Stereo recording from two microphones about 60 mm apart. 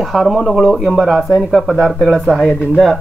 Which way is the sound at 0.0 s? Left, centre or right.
Centre.